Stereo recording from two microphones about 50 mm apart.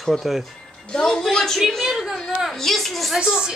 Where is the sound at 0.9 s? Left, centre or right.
Centre.